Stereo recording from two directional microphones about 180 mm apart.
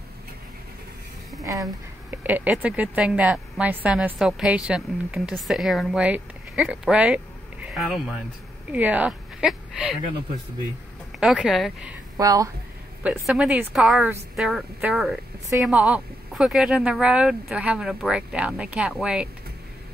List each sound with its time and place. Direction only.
1.4 s a woman's voice: 15° right (ahead or behind)
11.1 s a woman's voice: 5° right (ahead or behind)
12.2 s a woman's voice: 20° right (ahead or behind)
13.0 s a woman's voice: 10° right (ahead or behind)